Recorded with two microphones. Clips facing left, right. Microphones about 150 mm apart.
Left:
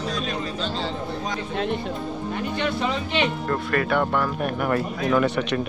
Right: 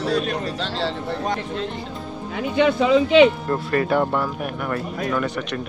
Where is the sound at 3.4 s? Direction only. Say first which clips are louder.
Right 2 dB; 30° right (ahead or behind).